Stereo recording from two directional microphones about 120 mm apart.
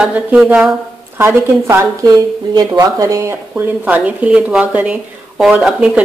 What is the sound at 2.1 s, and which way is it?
Speech, 35° right (ahead or behind).